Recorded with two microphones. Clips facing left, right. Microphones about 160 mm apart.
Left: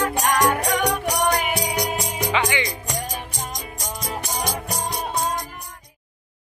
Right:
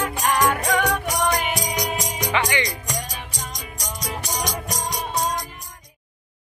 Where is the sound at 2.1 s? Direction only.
10° left (ahead or behind).